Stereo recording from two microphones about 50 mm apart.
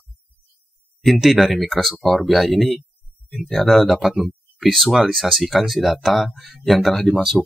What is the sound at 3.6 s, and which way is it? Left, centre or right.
Speech, centre.